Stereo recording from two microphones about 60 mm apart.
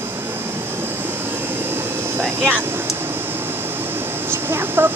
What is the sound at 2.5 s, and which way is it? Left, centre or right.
Speech, right.